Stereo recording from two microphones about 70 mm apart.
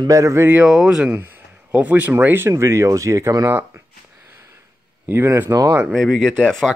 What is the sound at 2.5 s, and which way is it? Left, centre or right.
Speech, right.